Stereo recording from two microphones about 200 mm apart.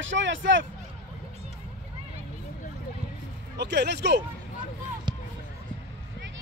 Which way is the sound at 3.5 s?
60° right (ahead or behind).